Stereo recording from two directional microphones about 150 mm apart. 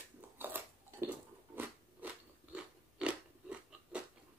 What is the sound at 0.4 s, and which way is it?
Biting, 15° right (ahead or behind).